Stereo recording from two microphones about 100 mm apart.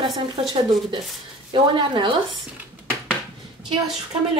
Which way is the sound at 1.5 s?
55° right (ahead or behind).